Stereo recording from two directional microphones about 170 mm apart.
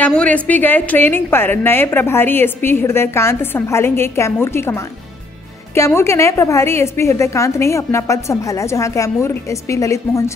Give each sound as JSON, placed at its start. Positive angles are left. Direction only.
{"t": 0.0, "sound": "a woman's voice", "side_deg": 5}